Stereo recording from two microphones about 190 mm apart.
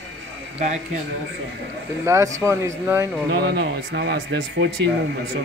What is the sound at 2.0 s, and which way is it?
A man's voice, 15° right (ahead or behind).